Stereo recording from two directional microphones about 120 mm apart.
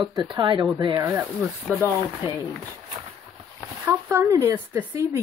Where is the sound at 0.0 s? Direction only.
40° right (ahead or behind).